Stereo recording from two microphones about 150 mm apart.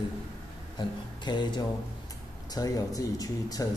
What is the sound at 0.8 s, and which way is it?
Music, 30° left (ahead or behind).